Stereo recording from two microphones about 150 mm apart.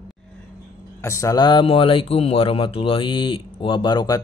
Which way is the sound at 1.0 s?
20° left (ahead or behind).